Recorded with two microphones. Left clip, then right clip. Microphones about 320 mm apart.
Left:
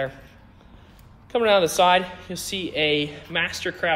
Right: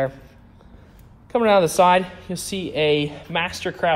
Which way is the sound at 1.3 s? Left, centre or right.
Centre.